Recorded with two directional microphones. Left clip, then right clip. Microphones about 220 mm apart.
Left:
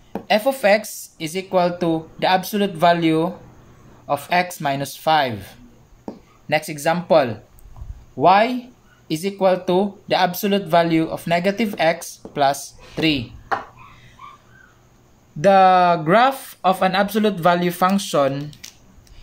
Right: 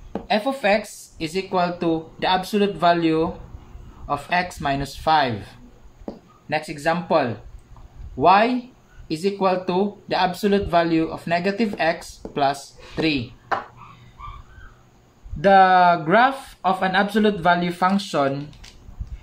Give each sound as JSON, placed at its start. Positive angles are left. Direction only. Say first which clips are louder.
{"t": 0.3, "sound": "speech", "louder": "left 4 dB", "side_deg": 45}
{"t": 6.5, "sound": "speech", "louder": "left 3 dB", "side_deg": 45}
{"t": 15.4, "sound": "speech", "louder": "left 1 dB", "side_deg": 45}